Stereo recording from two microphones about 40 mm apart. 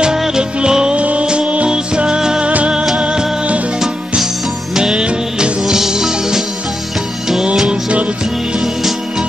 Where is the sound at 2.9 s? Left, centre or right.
Right.